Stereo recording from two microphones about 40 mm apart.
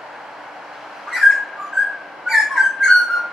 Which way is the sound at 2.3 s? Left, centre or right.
Centre.